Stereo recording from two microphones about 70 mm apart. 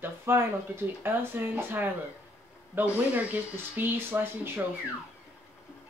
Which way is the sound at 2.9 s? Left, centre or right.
Right.